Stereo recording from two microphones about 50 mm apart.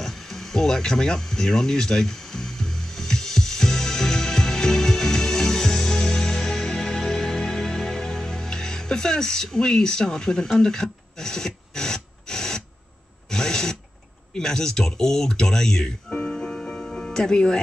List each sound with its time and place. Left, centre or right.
0.0 s a sound: centre
14.3 s speech: centre
16.9 s music: centre